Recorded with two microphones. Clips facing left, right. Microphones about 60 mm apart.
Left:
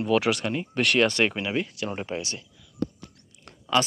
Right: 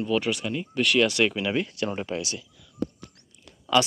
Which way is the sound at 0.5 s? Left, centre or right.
Left.